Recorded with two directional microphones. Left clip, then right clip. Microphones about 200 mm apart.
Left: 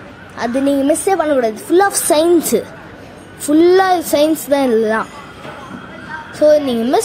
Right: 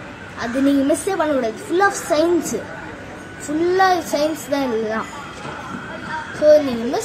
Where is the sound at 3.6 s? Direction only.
45° left (ahead or behind).